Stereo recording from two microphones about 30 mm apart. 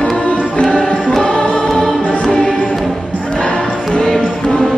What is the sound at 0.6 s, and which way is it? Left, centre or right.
Music, left.